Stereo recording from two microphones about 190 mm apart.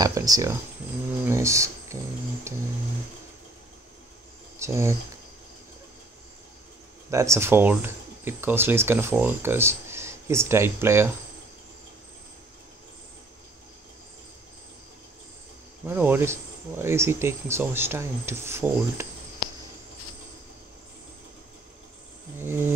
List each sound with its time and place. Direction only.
0.0 s speech: 20° right (ahead or behind)
2.5 s a sound: 15° right (ahead or behind)
4.6 s speech: 15° right (ahead or behind)
7.1 s speech: 15° right (ahead or behind)
15.9 s speech: 10° right (ahead or behind)
22.4 s speech: 10° right (ahead or behind)